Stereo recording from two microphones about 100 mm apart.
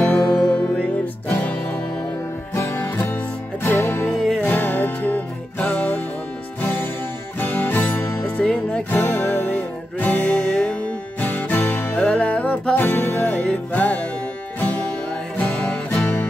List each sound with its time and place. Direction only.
0.3 s music: 10° left (ahead or behind)
2.5 s music: 25° left (ahead or behind)
4.1 s music: 5° left (ahead or behind)
4.4 s music: 20° left (ahead or behind)
7.3 s music: 20° left (ahead or behind)
15.3 s music: 15° left (ahead or behind)